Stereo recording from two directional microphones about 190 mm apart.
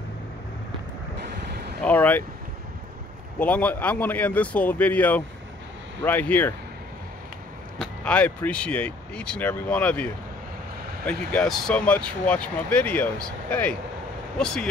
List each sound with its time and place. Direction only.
1.5 s a sound: 60° right (ahead or behind)
1.9 s speech: 10° left (ahead or behind)
3.3 s speech: 5° left (ahead or behind)
7.8 s speech: 5° left (ahead or behind)